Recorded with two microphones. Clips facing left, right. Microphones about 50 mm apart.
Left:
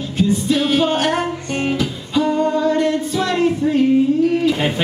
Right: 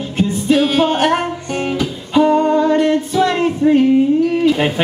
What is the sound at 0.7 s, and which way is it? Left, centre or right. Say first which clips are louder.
Music: right 3 dB; centre.